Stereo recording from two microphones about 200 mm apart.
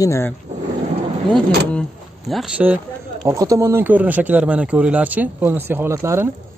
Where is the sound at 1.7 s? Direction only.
Centre (ahead or behind); by 6.2 s 15° right (ahead or behind).